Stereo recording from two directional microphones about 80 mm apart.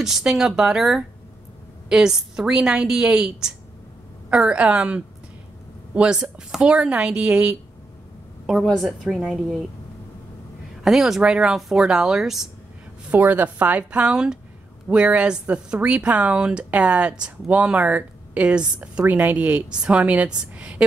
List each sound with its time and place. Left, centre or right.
0.0 s speech: centre
8.5 s speech: centre
10.8 s speech: centre
13.1 s speech: right